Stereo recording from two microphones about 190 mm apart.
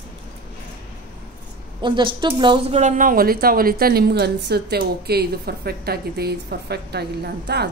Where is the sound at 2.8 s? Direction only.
45° right (ahead or behind).